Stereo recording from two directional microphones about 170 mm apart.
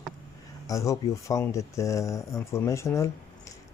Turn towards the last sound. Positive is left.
turn(degrees=15)  # may be behind; listen again after turning